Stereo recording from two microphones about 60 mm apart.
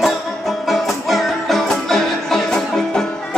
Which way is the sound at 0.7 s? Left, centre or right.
Centre.